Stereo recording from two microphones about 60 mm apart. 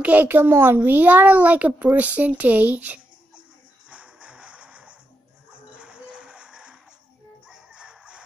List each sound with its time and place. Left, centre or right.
0.0 s a child's voice: right
3.9 s music: centre